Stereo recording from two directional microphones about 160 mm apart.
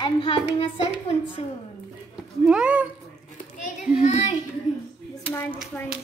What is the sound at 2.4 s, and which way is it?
Speech, 5° right (ahead or behind).